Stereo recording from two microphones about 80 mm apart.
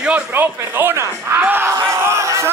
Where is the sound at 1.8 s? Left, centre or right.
Right.